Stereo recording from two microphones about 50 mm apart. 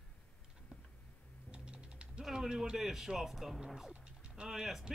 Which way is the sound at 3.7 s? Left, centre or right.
Centre.